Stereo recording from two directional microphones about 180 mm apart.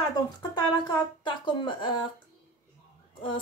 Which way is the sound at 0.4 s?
25° left (ahead or behind).